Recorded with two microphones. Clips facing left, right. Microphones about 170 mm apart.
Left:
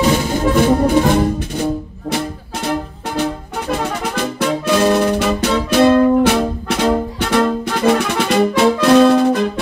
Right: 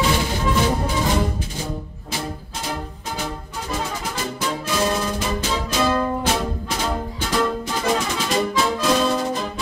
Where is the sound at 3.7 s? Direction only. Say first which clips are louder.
Left 7 dB; 70° left (ahead or behind).